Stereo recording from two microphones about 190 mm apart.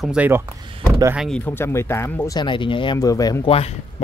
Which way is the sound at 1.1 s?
5° left (ahead or behind).